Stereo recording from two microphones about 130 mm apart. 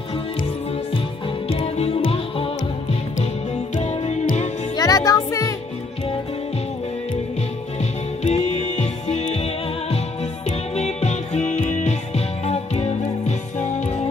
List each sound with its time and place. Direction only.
1.5 s music: 50° left (ahead or behind)
3.7 s music: 60° left (ahead or behind)
4.7 s music: 30° left (ahead or behind)
8.2 s music: 60° left (ahead or behind)